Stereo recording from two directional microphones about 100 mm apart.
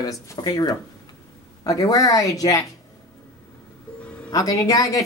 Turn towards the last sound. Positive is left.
turn(degrees=35)  # may be behind; listen again after turning